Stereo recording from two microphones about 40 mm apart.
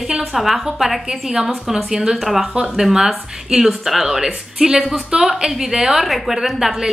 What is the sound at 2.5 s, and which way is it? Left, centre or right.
A woman's voice, right.